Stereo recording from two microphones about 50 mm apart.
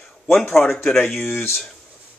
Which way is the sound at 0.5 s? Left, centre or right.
Centre.